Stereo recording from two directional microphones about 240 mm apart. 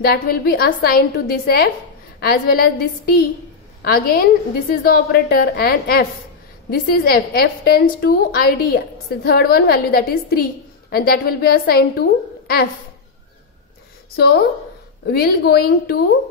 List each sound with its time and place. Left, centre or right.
0.0 s a woman's voice: left
14.1 s a woman's voice: left